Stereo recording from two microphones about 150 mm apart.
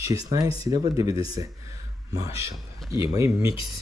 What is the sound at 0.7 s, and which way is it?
Speech, 20° right (ahead or behind).